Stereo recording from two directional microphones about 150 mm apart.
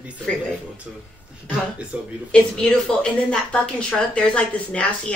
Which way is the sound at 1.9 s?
10° right (ahead or behind).